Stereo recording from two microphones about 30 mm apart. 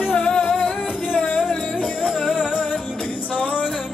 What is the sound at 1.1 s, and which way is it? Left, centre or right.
Music, left.